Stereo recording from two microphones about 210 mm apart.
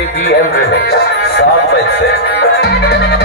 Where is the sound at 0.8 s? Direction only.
50° left (ahead or behind).